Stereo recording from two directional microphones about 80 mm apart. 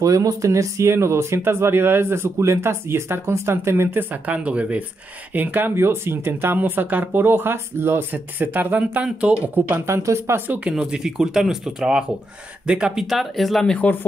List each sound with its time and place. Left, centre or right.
0.0 s speech: right
4.1 s speech: centre; by 10.4 s right
10.7 s speech: centre